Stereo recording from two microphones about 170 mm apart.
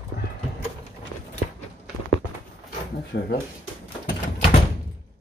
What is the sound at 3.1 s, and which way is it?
Speech, 70° left (ahead or behind).